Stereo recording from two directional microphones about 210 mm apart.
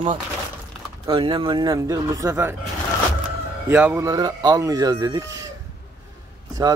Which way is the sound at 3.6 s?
5° right (ahead or behind).